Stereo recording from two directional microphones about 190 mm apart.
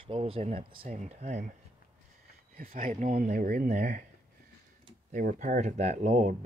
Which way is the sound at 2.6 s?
45° right (ahead or behind).